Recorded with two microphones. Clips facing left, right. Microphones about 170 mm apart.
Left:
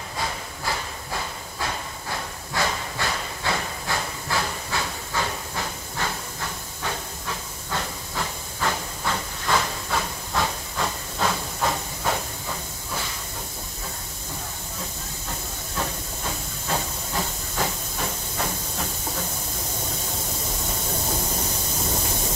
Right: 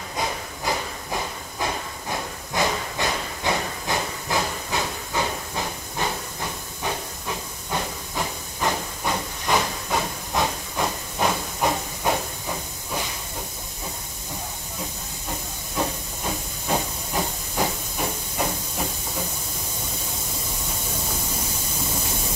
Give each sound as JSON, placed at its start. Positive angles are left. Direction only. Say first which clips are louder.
{"t": 0.2, "sound": "a sound", "louder": "right 3 dB", "side_deg": -20}
{"t": 6.8, "sound": "hiss", "louder": "right 2 dB", "side_deg": -15}
{"t": 16.6, "sound": "hiss", "louder": "right 3 dB", "side_deg": -15}